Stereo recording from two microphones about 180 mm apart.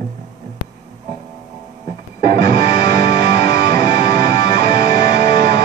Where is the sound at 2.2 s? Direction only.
60° right (ahead or behind).